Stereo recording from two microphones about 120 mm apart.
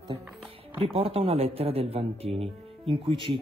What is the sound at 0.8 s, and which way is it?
Speech, 50° right (ahead or behind).